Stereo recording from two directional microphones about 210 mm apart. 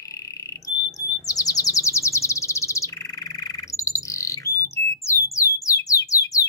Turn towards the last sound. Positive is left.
turn(degrees=15)  # may be behind; listen again after turning